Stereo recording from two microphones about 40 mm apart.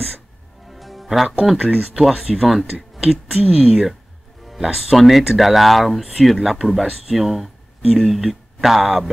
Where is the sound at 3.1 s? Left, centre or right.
Centre.